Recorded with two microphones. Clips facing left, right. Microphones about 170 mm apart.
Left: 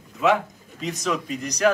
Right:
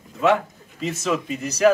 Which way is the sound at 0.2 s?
Centre (ahead or behind).